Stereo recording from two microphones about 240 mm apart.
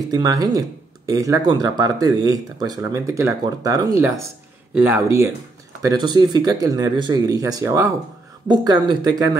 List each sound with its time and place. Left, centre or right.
0.1 s speech: centre